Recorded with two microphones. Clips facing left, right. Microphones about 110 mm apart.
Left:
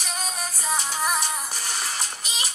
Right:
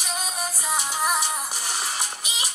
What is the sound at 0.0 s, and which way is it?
Music, 15° right (ahead or behind).